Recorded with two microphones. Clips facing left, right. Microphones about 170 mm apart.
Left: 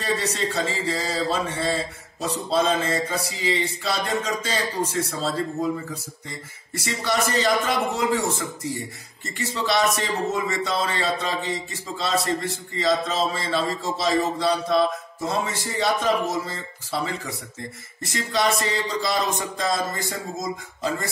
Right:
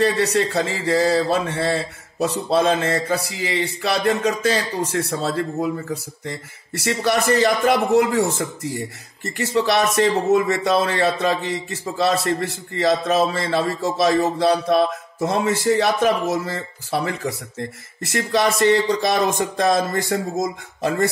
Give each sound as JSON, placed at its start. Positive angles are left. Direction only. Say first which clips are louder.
{"t": 0.0, "sound": "speech", "louder": "right 7 dB", "side_deg": -70}
{"t": 6.8, "sound": "speech", "louder": "right 5 dB", "side_deg": -65}